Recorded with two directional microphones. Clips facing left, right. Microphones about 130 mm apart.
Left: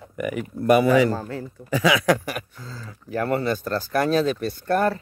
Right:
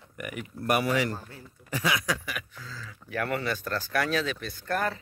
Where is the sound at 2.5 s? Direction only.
40° left (ahead or behind).